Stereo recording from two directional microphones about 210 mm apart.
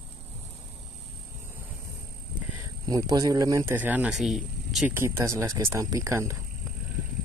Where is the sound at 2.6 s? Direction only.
15° right (ahead or behind).